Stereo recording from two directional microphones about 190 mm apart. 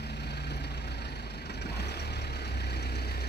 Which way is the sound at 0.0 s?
60° left (ahead or behind).